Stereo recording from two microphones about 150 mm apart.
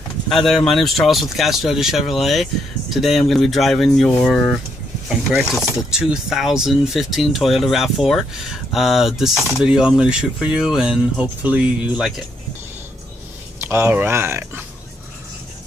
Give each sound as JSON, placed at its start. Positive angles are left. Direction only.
{"t": 0.3, "sound": "speech", "side_deg": 0}
{"t": 13.6, "sound": "speech", "side_deg": -15}